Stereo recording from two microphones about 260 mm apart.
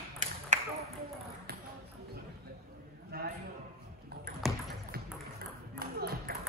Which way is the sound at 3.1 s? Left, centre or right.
Right.